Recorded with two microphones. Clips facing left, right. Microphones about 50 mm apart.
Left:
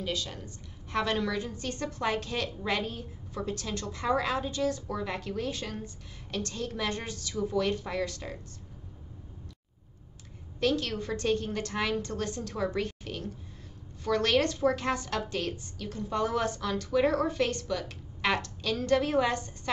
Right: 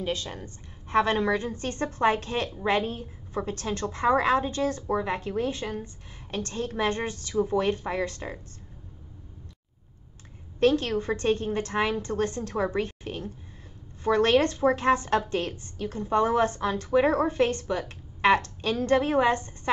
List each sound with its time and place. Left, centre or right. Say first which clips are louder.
0.0 s a woman's voice: right 3 dB; right
10.6 s a woman's voice: right 6 dB; right